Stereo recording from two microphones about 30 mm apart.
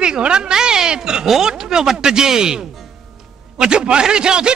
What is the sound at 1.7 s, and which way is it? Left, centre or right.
Speech, right.